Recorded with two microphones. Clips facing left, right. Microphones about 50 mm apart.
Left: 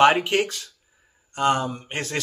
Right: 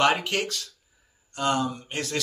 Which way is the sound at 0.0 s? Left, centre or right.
Left.